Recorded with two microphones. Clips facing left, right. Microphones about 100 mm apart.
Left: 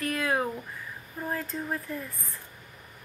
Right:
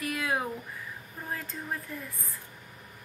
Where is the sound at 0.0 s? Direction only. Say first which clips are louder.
Left 3 dB; 10° right (ahead or behind).